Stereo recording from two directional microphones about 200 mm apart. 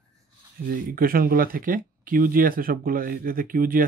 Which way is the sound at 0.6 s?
45° right (ahead or behind).